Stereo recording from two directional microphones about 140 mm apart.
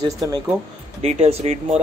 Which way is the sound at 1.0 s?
50° right (ahead or behind).